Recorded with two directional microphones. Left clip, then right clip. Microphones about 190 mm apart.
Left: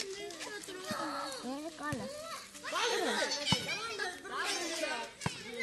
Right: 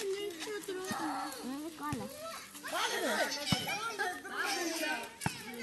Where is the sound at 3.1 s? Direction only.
50° left (ahead or behind).